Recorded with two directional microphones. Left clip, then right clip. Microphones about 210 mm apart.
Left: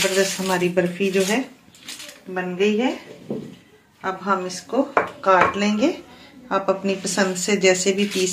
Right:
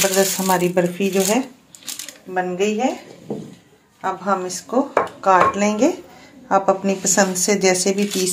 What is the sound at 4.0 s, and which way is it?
Speech, 60° right (ahead or behind).